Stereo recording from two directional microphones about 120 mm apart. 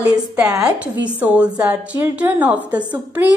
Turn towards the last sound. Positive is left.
turn(degrees=-15)  # may be behind; listen again after turning